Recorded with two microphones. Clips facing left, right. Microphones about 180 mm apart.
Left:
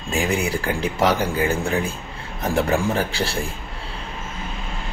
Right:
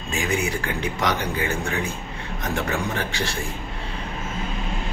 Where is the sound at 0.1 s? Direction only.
35° left (ahead or behind).